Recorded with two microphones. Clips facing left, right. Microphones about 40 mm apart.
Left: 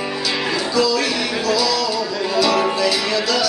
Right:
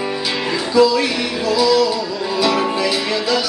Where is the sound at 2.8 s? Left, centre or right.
Centre.